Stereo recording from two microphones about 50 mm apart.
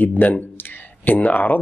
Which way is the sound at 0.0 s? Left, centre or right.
Left.